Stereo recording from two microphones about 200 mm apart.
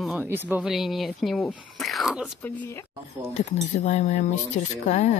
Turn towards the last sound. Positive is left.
turn(degrees=35)  # may be behind; listen again after turning